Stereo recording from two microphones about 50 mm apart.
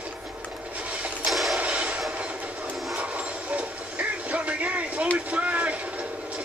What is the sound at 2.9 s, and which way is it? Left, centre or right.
Train, right.